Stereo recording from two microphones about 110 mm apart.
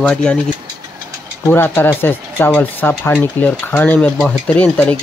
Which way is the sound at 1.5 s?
20° left (ahead or behind).